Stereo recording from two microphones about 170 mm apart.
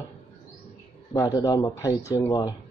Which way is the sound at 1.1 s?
20° left (ahead or behind).